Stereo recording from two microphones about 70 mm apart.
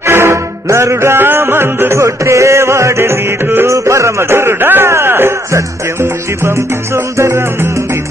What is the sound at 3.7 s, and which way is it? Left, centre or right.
Speech, right.